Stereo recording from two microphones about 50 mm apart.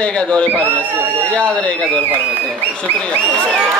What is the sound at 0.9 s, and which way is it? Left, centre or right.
Speech, right.